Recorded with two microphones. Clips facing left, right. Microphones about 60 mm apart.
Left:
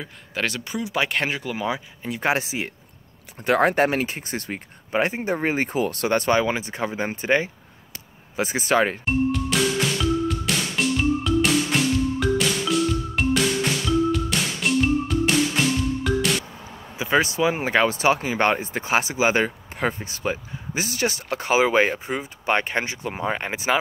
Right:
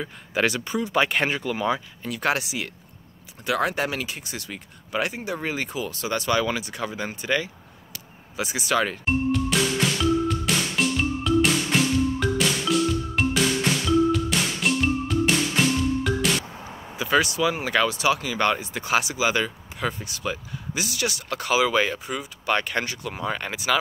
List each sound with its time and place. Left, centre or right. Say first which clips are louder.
0.0 s speech: right 3 dB; centre
2.0 s speech: left 2 dB; left
3.4 s speech: left 6 dB; left
6.3 s speech: left 3 dB; left
9.0 s music: left 1 dB; centre
16.9 s speech: left 1 dB; left